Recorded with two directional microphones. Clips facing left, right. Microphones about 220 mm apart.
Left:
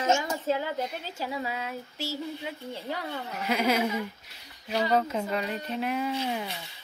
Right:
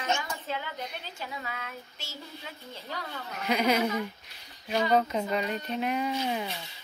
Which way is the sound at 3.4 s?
5° left (ahead or behind).